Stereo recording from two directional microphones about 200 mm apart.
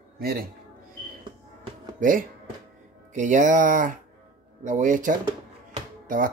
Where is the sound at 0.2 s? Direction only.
50° right (ahead or behind).